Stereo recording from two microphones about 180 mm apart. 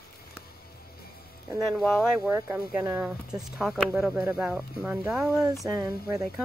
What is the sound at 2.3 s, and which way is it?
Speech, 10° right (ahead or behind).